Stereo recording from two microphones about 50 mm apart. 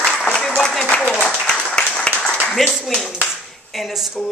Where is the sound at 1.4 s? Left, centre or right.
Centre.